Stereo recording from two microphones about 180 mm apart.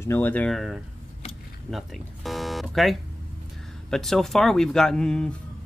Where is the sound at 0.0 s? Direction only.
10° left (ahead or behind).